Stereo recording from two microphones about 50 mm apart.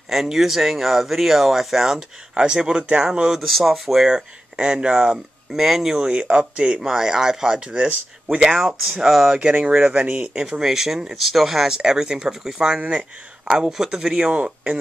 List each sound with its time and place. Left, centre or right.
0.1 s speech: centre
3.3 s speech: centre
4.1 s speech: centre
5.5 s speech: centre
14.4 s speech: right